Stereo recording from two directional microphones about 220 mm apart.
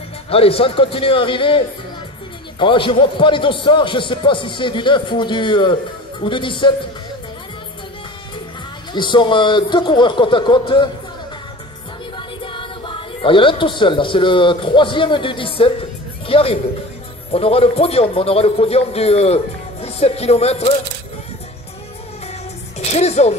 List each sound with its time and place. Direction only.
0.3 s a man's voice: 25° left (ahead or behind)
2.6 s a man's voice: 20° left (ahead or behind)
8.9 s a man's voice: 20° left (ahead or behind)
12.2 s a man's voice: 25° left (ahead or behind)
22.8 s speech: 30° left (ahead or behind)